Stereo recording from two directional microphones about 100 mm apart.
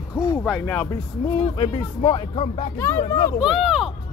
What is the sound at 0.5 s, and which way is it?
Speech, 15° left (ahead or behind).